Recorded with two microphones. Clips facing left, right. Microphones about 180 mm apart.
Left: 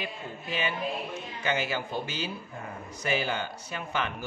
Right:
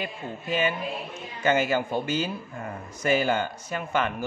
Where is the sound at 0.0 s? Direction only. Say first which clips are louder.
Right 4 dB; 50° right (ahead or behind).